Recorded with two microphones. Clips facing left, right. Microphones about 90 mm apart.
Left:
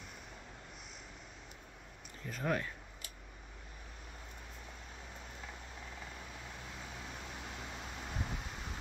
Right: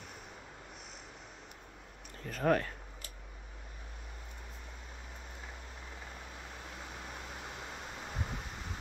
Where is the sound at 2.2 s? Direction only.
50° right (ahead or behind).